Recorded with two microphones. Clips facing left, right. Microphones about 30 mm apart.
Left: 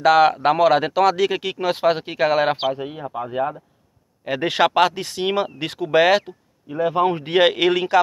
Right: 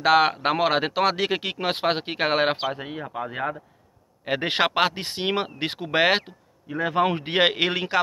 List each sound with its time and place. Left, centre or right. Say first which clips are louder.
0.0 s speech: left 4 dB; centre; by 2.5 s right
2.8 s speech: left 3 dB; right
4.2 s speech: left 4 dB; right
6.8 s speech: left 3 dB; right
7.2 s speech: left 5 dB; right